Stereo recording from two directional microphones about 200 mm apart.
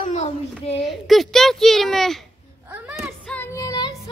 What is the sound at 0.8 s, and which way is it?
A child's voice, centre (ahead or behind).